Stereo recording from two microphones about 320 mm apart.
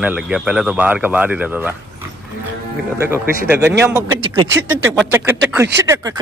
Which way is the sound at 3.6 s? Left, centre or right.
Right.